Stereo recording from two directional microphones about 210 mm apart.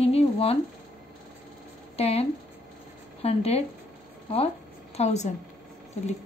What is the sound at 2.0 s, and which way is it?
A woman's voice, 30° left (ahead or behind).